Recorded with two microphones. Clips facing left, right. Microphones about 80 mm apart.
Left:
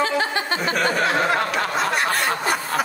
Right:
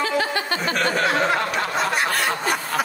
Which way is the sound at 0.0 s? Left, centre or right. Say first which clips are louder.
Left 1 dB; left.